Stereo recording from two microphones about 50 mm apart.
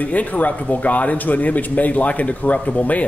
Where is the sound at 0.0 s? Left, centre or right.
Left.